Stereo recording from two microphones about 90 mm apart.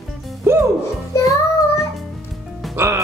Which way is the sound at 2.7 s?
30° right (ahead or behind).